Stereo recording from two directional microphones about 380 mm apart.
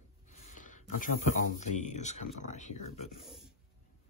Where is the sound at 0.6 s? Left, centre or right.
Left.